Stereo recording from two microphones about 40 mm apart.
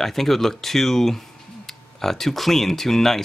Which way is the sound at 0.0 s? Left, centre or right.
Centre.